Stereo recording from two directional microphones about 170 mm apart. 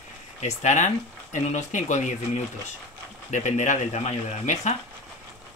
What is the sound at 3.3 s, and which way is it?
Speech, 45° left (ahead or behind).